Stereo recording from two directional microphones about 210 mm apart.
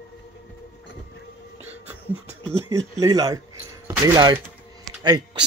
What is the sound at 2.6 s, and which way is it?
Speech, 15° right (ahead or behind).